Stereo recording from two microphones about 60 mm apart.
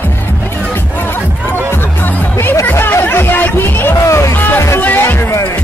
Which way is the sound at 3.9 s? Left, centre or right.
Left.